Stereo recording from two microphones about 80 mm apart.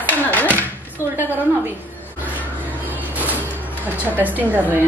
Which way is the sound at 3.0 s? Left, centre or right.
Right.